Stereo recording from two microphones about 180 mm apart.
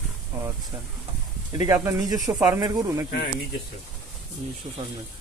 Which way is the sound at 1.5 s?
20° right (ahead or behind).